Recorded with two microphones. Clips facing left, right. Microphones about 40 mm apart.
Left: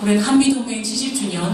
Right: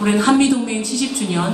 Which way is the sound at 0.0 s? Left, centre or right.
Right.